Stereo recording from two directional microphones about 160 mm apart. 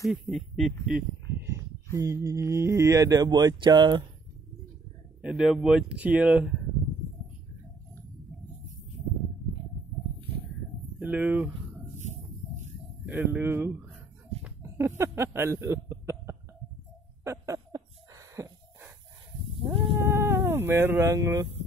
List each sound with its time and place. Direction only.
0.0 s speech: centre (ahead or behind)
2.0 s speech: 20° right (ahead or behind)
5.2 s speech: 5° right (ahead or behind)
11.0 s speech: 10° right (ahead or behind)
13.0 s speech: 10° right (ahead or behind)
14.4 s a sound: 15° right (ahead or behind)
19.6 s sheep: 30° right (ahead or behind)
20.1 s speech: 15° right (ahead or behind)